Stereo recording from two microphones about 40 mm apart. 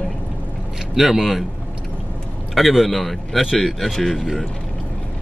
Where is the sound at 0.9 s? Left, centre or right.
Centre.